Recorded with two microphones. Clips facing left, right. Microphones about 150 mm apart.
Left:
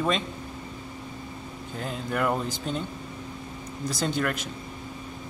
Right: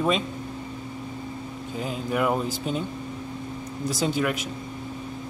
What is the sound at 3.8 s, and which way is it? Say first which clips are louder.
Speech: right 2 dB; 5° right (ahead or behind).